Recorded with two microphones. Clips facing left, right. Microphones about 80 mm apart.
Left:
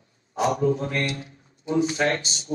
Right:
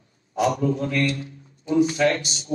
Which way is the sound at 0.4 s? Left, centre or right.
Left.